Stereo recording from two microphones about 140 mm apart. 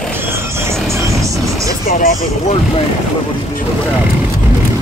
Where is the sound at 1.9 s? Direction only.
75° left (ahead or behind).